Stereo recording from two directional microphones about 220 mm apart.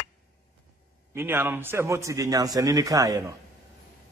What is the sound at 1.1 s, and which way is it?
A man's voice, 10° right (ahead or behind).